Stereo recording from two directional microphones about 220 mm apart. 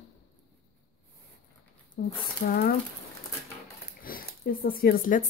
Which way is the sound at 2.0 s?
35° left (ahead or behind).